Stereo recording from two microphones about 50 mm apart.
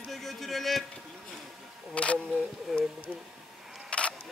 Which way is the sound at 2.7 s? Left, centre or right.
Centre.